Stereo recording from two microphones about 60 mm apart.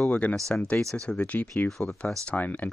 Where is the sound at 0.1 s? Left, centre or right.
Left.